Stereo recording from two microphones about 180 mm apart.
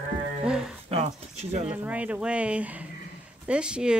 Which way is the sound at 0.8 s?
35° right (ahead or behind).